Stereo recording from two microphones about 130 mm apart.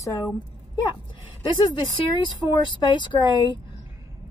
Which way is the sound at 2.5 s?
35° left (ahead or behind).